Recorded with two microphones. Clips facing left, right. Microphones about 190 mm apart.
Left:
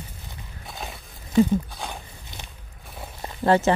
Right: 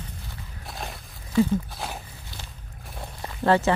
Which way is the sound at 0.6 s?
Centre (ahead or behind).